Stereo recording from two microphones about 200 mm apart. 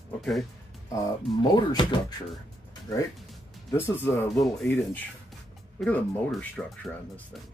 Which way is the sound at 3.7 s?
10° left (ahead or behind).